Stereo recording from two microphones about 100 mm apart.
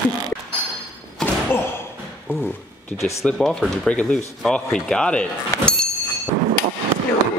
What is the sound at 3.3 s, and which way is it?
Speech, 5° left (ahead or behind).